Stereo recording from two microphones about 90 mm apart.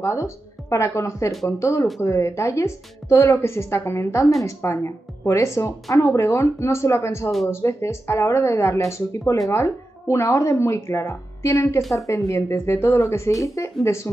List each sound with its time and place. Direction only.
0.0 s a woman's voice: 30° left (ahead or behind)
7.2 s speech: centre (ahead or behind)
7.6 s a woman's voice: 30° left (ahead or behind)
11.8 s speech: centre (ahead or behind)
12.4 s a woman's voice: 30° left (ahead or behind)